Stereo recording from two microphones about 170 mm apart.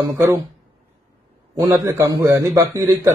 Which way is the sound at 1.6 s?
20° right (ahead or behind).